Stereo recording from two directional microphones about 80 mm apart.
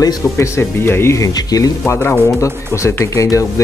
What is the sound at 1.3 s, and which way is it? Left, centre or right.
Speech, left.